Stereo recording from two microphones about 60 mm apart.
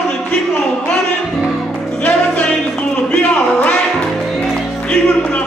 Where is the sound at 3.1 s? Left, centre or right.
Centre.